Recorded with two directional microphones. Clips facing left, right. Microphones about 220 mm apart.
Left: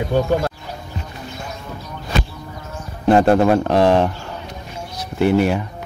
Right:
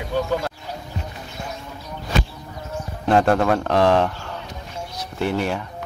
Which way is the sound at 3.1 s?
20° left (ahead or behind).